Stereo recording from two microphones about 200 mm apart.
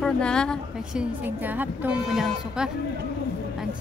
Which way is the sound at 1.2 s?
10° right (ahead or behind).